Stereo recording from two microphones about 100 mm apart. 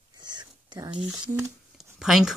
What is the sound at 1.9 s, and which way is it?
Speech, 5° right (ahead or behind).